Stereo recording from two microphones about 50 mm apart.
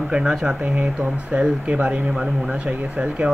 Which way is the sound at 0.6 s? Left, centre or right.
Right.